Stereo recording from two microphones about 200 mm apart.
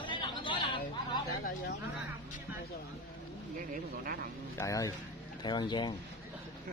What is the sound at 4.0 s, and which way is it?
Speech, 45° right (ahead or behind).